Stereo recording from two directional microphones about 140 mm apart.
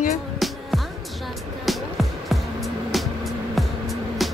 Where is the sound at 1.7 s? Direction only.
Centre (ahead or behind).